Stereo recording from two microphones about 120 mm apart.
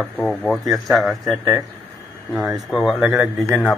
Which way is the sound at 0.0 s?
5° left (ahead or behind).